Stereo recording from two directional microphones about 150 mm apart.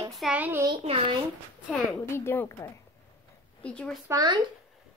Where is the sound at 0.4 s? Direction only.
15° right (ahead or behind).